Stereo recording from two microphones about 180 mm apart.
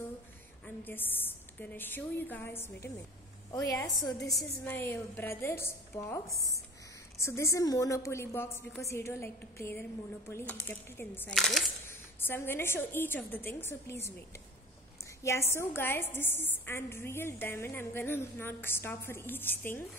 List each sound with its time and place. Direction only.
0.8 s a woman's voice: 10° left (ahead or behind)
11.9 s a woman's voice: 15° left (ahead or behind)
15.2 s a woman's voice: 15° left (ahead or behind)